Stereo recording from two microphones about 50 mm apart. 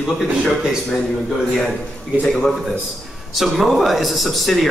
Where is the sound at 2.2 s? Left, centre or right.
Centre.